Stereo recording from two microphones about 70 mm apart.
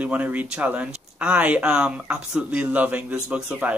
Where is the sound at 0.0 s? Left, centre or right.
Right.